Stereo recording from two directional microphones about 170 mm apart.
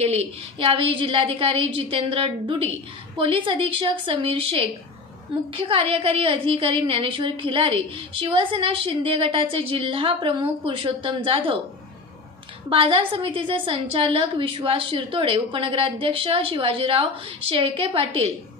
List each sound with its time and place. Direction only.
0.0 s a woman's voice: 35° right (ahead or behind)
12.6 s a woman's voice: 30° right (ahead or behind)